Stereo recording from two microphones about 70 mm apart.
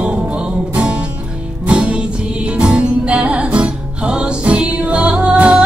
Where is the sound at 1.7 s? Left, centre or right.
Centre.